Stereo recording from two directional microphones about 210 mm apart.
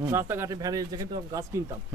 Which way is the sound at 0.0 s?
10° right (ahead or behind).